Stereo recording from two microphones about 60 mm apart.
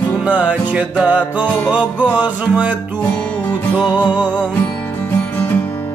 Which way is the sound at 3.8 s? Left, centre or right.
Right.